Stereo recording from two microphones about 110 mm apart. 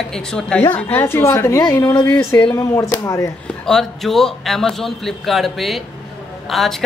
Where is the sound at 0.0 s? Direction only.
5° left (ahead or behind); by 3.3 s 30° left (ahead or behind).